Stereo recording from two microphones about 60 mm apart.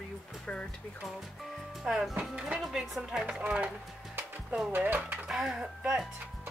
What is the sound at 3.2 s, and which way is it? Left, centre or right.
Speech, centre.